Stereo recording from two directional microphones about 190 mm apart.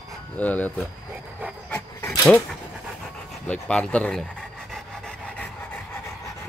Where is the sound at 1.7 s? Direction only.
5° left (ahead or behind).